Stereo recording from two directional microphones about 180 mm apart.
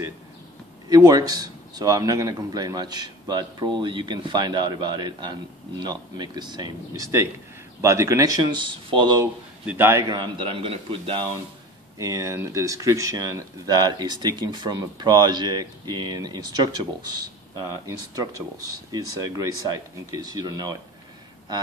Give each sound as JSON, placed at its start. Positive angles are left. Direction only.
{"t": 0.8, "sound": "speech", "side_deg": -20}
{"t": 9.2, "sound": "speech", "side_deg": -10}
{"t": 12.0, "sound": "speech", "side_deg": -15}